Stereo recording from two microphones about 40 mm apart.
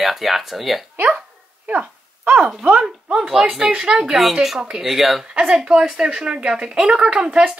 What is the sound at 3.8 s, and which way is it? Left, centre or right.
Speech, centre.